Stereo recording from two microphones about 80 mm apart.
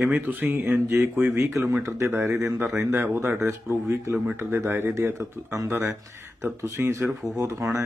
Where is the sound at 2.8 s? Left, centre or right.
Right.